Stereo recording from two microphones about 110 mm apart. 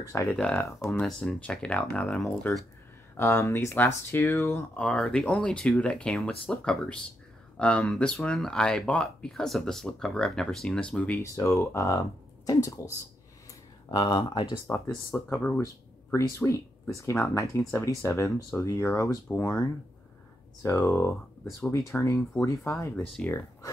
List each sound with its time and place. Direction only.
0.3 s speech: 10° left (ahead or behind)
3.2 s speech: 20° left (ahead or behind)
4.7 s speech: 10° left (ahead or behind)
11.3 s speech: 25° left (ahead or behind); by 14.6 s 50° left (ahead or behind)
14.7 s speech: 25° left (ahead or behind)
22.9 s speech: 10° left (ahead or behind)